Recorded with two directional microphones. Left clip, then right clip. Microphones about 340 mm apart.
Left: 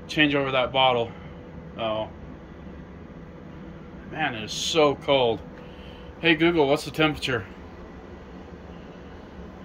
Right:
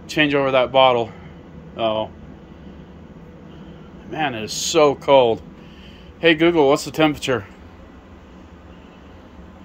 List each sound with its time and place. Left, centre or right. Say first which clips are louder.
0.1 s speech: right 5 dB; centre
4.1 s speech: right 5 dB; centre